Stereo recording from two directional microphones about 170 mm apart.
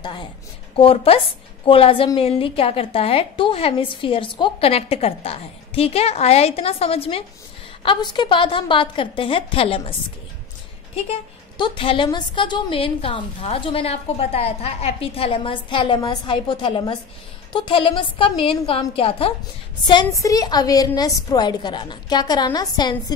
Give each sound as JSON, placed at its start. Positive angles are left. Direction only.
{"t": 0.7, "sound": "a woman's voice", "side_deg": 35}
{"t": 11.1, "sound": "a woman's voice", "side_deg": 30}
{"t": 19.9, "sound": "a woman's voice", "side_deg": 20}